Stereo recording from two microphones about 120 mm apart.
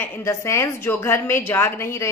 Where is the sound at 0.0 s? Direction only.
25° left (ahead or behind).